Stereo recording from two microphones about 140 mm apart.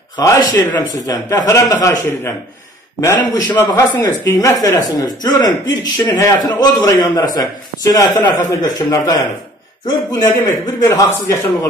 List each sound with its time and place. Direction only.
0.2 s a man's voice: 25° left (ahead or behind)